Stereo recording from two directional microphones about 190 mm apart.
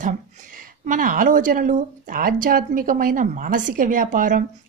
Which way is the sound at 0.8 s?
45° right (ahead or behind).